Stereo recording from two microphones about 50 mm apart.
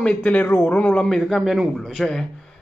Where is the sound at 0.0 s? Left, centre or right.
Left.